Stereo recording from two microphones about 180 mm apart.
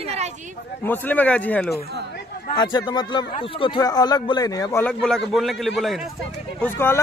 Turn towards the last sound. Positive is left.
turn(degrees=15)  # may be behind; listen again after turning